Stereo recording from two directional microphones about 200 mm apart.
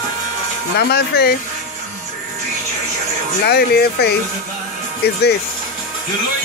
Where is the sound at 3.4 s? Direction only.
55° left (ahead or behind).